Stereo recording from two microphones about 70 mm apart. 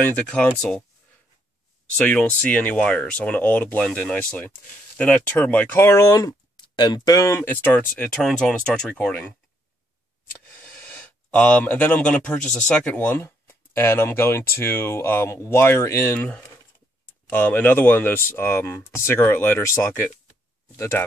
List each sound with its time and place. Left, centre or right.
0.6 s speech: centre
2.0 s speech: centre
5.8 s speech: left
7.2 s speech: left
7.4 s speech: left
8.2 s speech: centre
10.5 s speech: centre
13.2 s speech: left
16.2 s speech: centre; by 21.0 s left